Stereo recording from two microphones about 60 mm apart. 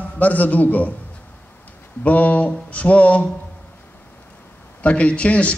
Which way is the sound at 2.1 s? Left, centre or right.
Left.